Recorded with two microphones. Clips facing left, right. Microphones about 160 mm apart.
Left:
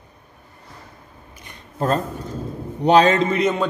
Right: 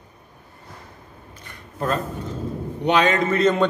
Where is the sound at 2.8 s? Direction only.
35° left (ahead or behind).